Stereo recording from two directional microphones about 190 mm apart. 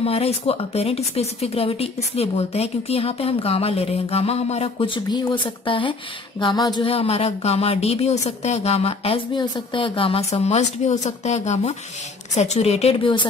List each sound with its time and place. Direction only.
0.0 s speech: 30° left (ahead or behind)